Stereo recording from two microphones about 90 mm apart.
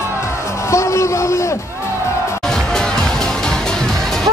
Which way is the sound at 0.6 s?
35° left (ahead or behind).